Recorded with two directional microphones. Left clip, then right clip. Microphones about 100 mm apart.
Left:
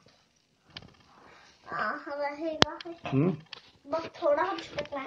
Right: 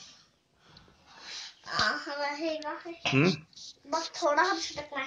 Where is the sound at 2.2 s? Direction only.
10° right (ahead or behind).